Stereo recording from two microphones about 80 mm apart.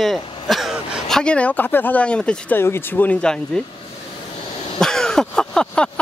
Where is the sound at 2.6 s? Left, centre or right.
Left.